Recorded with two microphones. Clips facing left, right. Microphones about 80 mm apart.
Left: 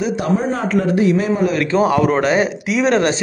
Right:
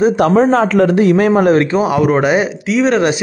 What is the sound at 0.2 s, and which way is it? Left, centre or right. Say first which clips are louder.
A man's voice: right 8 dB; right.